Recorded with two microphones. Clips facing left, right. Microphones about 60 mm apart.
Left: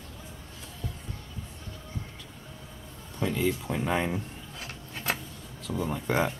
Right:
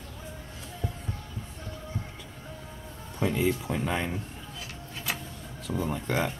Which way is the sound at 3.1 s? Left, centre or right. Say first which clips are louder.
Right 1 dB; centre.